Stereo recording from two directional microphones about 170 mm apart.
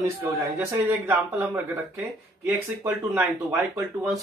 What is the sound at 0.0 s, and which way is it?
Speech, 15° right (ahead or behind).